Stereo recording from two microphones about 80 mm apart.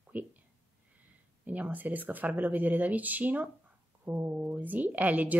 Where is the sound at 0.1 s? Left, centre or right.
Right.